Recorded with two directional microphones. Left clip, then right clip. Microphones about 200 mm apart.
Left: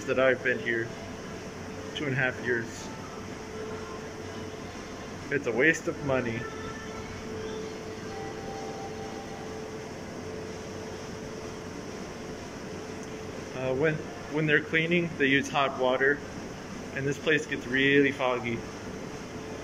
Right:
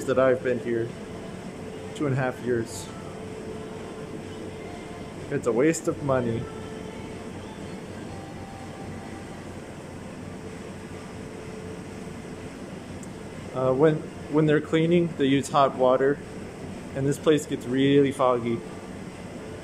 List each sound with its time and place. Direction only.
0.1 s speech: 15° right (ahead or behind)
2.0 s speech: 20° right (ahead or behind)
5.3 s speech: 15° right (ahead or behind)
13.6 s speech: 20° right (ahead or behind)
17.2 s speech: 25° right (ahead or behind)